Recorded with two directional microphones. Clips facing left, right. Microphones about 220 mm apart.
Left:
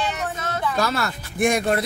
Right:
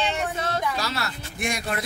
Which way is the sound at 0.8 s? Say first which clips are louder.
Left 6 dB; 50° left (ahead or behind).